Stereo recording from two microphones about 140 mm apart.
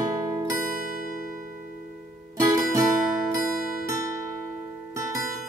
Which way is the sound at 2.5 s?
20° right (ahead or behind).